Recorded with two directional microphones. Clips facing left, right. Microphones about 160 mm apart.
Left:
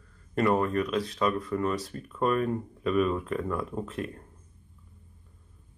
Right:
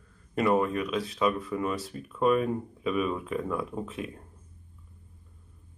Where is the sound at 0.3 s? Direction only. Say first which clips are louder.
Even; 5° right (ahead or behind).